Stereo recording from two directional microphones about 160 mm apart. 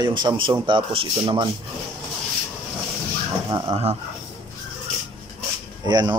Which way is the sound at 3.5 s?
30° right (ahead or behind).